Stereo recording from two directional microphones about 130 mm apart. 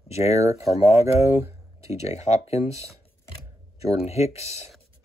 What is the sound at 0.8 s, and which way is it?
Speech, 20° right (ahead or behind).